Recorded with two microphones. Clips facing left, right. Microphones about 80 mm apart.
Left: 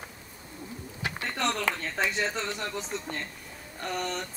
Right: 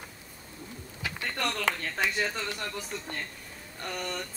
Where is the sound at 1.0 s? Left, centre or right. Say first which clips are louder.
Left 2 dB; centre.